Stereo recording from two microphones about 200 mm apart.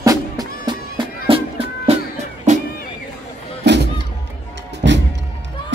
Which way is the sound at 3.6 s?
60° right (ahead or behind).